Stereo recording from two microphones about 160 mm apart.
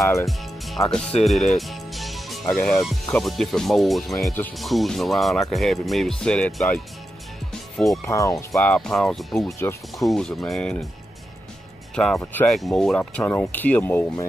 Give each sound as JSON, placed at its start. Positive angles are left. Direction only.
{"t": 0.0, "sound": "speech", "side_deg": 20}
{"t": 0.3, "sound": "music", "side_deg": 0}
{"t": 1.2, "sound": "speech", "side_deg": 0}
{"t": 1.6, "sound": "music", "side_deg": 0}
{"t": 2.7, "sound": "speech", "side_deg": 0}
{"t": 8.0, "sound": "speech", "side_deg": 20}
{"t": 8.5, "sound": "speech", "side_deg": 5}
{"t": 11.9, "sound": "speech", "side_deg": 5}